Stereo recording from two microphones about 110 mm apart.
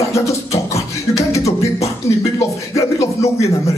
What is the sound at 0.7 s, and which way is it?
Beatboxing, 30° left (ahead or behind).